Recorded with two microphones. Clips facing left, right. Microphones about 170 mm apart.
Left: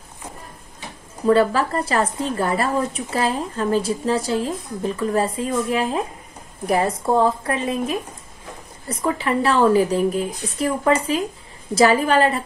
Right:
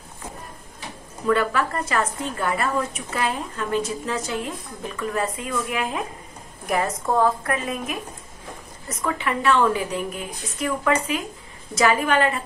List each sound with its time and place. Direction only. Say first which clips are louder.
1.2 s a woman's voice: left 5 dB; 30° left (ahead or behind)